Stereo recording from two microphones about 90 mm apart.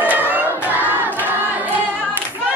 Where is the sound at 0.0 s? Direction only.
20° right (ahead or behind).